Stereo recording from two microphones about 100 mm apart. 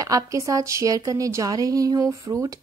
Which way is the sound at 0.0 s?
35° right (ahead or behind).